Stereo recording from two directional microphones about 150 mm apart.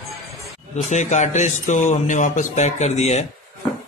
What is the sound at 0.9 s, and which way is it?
A man's voice, 55° left (ahead or behind).